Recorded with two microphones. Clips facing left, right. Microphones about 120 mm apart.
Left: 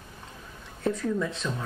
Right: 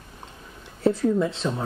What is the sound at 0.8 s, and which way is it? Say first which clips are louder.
Speech: right 7 dB; 30° right (ahead or behind).